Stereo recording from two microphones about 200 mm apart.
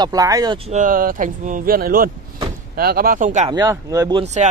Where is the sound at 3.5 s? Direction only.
20° right (ahead or behind).